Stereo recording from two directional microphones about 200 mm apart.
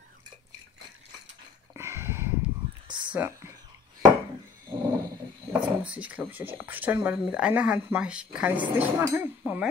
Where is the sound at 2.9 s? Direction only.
25° right (ahead or behind).